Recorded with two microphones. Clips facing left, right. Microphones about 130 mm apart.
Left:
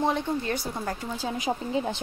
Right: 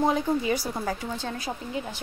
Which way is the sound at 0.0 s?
5° right (ahead or behind).